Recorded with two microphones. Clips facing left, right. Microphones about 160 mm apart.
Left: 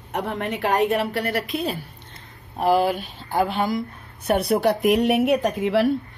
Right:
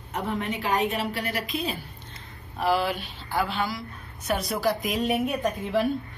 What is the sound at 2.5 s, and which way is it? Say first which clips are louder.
A woman's voice: left 5 dB; 50° left (ahead or behind).